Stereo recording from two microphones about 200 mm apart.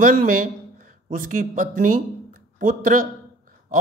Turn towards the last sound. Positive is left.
turn(degrees=-40)  # may be behind; listen again after turning